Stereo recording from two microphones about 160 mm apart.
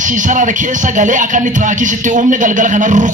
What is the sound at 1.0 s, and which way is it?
Speech, 50° right (ahead or behind).